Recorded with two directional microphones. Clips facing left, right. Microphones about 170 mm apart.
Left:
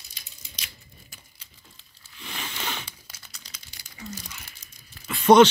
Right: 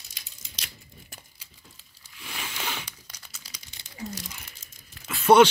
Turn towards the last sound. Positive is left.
turn(degrees=-10)  # may be behind; listen again after turning